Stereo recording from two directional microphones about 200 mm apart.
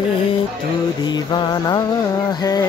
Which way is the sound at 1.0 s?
20° left (ahead or behind).